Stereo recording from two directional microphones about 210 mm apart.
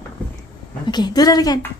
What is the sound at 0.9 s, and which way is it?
Speech, 20° left (ahead or behind).